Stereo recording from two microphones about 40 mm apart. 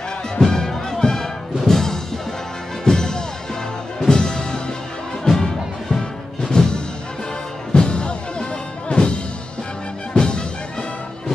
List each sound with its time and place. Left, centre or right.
0.4 s music: centre
10.1 s music: left